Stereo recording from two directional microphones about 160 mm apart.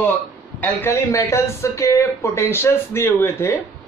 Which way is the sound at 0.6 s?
15° left (ahead or behind).